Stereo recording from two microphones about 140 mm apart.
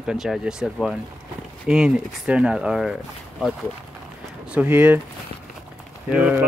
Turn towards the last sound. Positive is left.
turn(degrees=-10)  # may be behind; listen again after turning